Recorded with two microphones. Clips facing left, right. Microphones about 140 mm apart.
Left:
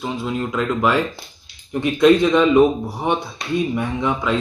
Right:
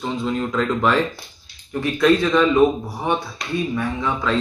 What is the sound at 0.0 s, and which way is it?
Speech, 10° left (ahead or behind).